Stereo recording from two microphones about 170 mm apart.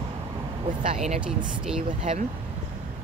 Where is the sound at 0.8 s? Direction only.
35° right (ahead or behind).